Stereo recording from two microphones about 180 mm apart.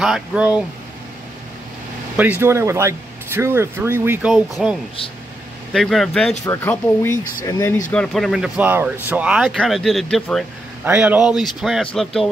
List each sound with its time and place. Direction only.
0.0 s speech: centre (ahead or behind)
2.1 s speech: 10° right (ahead or behind)
4.3 s speech: centre (ahead or behind); by 7.8 s 15° left (ahead or behind)
7.9 s speech: 5° left (ahead or behind)
10.9 s speech: 5° right (ahead or behind)